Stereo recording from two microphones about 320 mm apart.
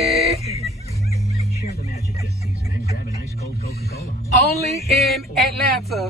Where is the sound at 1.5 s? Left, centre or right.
Left.